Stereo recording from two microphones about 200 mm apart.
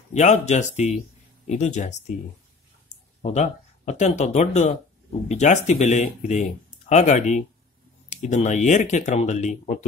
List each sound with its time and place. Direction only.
0.1 s speech: 35° left (ahead or behind)
3.2 s speech: 35° left (ahead or behind)